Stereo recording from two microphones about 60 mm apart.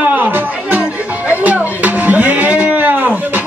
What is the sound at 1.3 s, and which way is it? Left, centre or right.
Music, right.